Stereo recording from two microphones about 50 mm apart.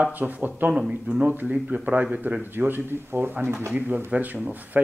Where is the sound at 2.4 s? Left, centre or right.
Right.